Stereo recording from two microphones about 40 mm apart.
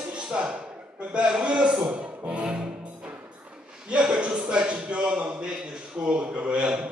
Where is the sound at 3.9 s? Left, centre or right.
Right.